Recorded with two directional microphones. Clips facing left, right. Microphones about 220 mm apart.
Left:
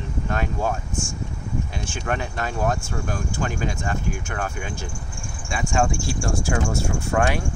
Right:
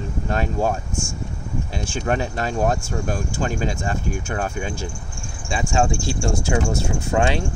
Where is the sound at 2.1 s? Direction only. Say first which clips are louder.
Right 4 dB; 30° right (ahead or behind).